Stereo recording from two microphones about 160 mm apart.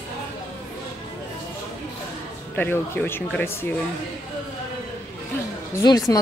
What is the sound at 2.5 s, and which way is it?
Speech, 15° left (ahead or behind).